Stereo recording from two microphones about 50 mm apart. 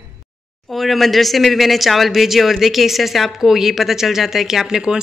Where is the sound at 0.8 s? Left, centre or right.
Centre.